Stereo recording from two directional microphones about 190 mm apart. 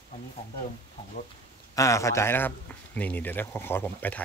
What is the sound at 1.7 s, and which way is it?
Speech, 15° left (ahead or behind).